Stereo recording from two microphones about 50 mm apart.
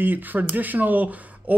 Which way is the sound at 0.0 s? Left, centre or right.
Right.